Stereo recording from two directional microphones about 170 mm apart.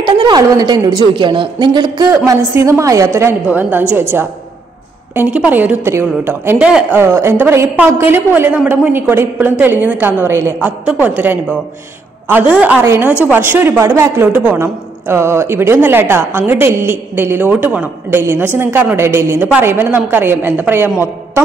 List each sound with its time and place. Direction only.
0.0 s a woman's voice: 25° right (ahead or behind); by 20.9 s 10° right (ahead or behind)